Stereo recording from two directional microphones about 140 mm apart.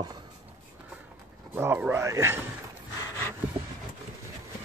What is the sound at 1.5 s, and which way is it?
Speech, 15° right (ahead or behind).